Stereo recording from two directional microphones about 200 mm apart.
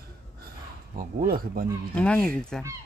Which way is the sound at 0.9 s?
45° right (ahead or behind).